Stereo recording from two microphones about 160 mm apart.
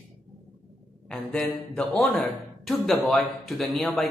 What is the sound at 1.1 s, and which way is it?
Speech, 5° left (ahead or behind).